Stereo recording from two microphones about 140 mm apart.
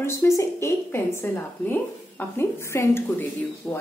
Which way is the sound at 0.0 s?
20° left (ahead or behind).